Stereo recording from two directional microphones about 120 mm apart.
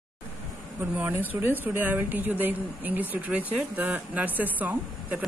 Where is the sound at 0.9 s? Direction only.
15° right (ahead or behind).